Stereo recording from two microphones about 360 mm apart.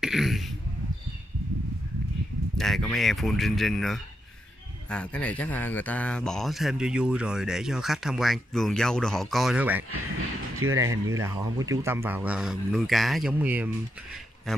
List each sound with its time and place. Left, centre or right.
0.0 s speech: centre
2.5 s speech: centre
10.5 s a sound: right
10.8 s speech: centre